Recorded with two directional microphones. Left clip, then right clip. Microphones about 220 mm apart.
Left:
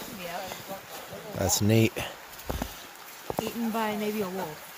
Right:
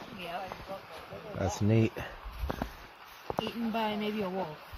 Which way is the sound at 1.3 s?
10° left (ahead or behind).